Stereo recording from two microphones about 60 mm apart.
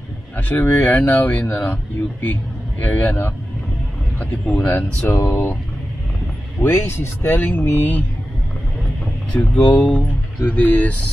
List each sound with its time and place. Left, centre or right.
0.4 s speech: left
2.8 s speech: left
6.6 s speech: left
9.3 s speech: left